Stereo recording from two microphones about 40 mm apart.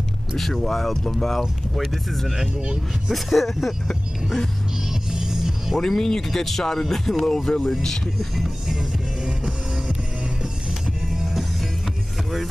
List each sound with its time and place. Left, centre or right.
0.4 s speech: centre
2.3 s speech: right
3.1 s speech: centre
5.1 s music: centre
5.8 s speech: centre
9.2 s music: centre
11.1 s music: centre